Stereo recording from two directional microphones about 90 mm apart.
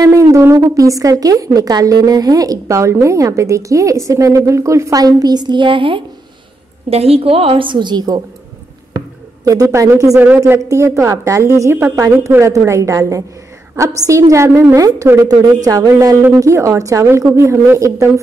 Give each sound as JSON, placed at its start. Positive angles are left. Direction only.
{"t": 0.0, "sound": "a woman's voice", "side_deg": -35}
{"t": 7.1, "sound": "a woman's voice", "side_deg": -90}
{"t": 9.4, "sound": "speech", "side_deg": -45}
{"t": 9.7, "sound": "a woman's voice", "side_deg": -30}